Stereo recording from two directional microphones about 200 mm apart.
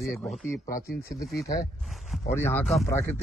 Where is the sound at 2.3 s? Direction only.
10° left (ahead or behind).